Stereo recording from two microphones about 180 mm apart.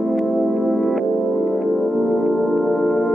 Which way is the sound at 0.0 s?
Centre (ahead or behind).